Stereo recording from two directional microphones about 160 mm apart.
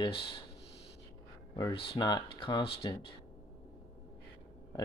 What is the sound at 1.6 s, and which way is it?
Speech, 30° left (ahead or behind).